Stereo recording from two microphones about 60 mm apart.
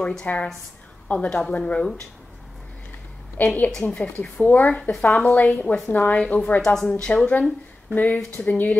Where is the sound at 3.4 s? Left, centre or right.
Left.